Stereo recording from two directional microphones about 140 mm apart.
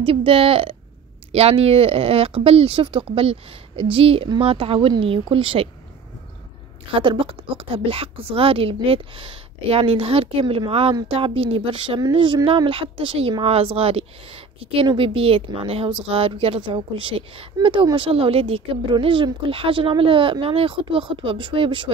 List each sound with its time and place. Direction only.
0.0 s a woman's voice: 40° right (ahead or behind)
6.9 s a woman's voice: 40° right (ahead or behind)